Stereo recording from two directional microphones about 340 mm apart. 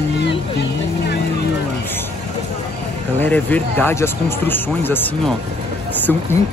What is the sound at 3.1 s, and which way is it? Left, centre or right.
Speech, centre.